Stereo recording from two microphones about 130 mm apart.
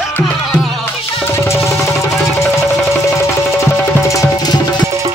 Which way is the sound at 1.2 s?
20° left (ahead or behind).